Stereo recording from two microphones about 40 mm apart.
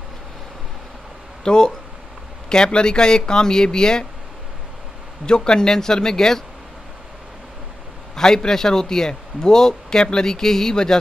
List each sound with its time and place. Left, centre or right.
1.4 s speech: left
5.2 s a man's voice: centre
8.2 s a man's voice: centre